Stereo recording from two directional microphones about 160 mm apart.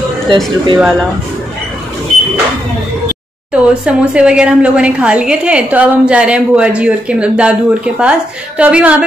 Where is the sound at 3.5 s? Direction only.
5° right (ahead or behind).